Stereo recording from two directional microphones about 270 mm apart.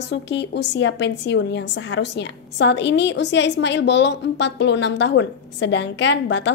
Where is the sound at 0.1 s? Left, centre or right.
Left.